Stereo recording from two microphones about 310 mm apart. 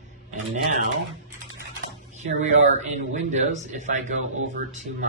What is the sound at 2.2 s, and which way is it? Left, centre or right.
A man's voice, right.